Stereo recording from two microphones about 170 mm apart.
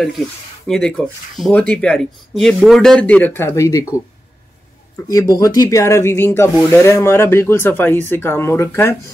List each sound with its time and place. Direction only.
0.7 s speech: 5° left (ahead or behind)
5.0 s speech: 20° left (ahead or behind)